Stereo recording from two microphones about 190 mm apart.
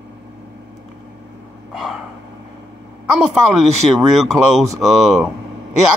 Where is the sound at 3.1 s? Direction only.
5° right (ahead or behind).